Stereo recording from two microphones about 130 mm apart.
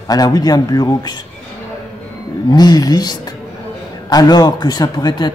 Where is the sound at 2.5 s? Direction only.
30° left (ahead or behind).